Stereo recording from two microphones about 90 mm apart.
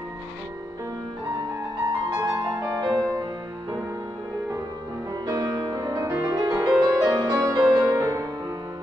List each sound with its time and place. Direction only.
1.9 s music: 45° right (ahead or behind)
5.2 s music: 50° right (ahead or behind)
6.0 s music: 30° right (ahead or behind)
6.3 s music: 40° right (ahead or behind)